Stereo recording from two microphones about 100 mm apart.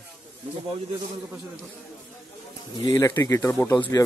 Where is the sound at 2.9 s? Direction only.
30° left (ahead or behind).